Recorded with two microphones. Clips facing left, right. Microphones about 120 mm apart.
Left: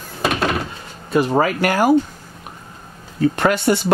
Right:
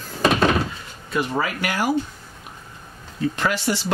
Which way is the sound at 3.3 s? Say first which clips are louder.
Left 6 dB; 55° left (ahead or behind).